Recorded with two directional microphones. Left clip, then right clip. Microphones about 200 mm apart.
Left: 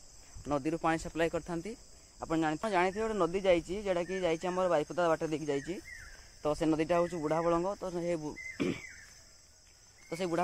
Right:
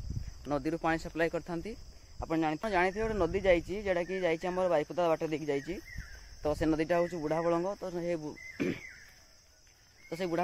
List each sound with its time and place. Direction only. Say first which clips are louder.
0.4 s speech: even; 5° left (ahead or behind)
10.0 s speech: even; 10° left (ahead or behind)